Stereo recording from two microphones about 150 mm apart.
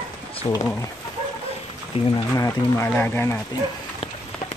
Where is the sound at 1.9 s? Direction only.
40° left (ahead or behind).